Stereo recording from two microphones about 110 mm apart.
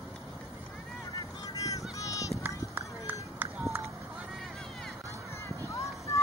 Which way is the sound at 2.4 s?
20° right (ahead or behind).